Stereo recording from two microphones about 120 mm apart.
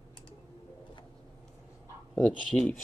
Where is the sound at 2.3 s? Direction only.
10° left (ahead or behind).